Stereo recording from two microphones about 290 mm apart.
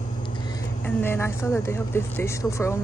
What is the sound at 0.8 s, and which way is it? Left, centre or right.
Speech, centre.